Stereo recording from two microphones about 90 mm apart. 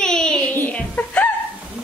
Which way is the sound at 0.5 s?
20° left (ahead or behind).